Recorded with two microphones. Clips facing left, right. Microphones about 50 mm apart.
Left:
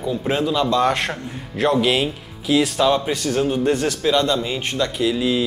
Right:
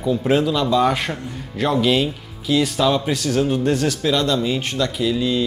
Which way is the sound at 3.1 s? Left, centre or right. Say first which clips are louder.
Right 1 dB; centre.